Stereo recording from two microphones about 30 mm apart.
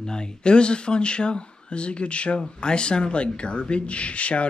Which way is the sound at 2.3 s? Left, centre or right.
Left.